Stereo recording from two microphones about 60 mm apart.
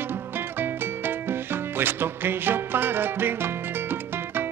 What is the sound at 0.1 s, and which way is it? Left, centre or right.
Music, right.